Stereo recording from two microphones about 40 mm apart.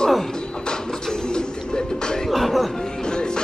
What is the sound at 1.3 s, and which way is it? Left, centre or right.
Music, centre.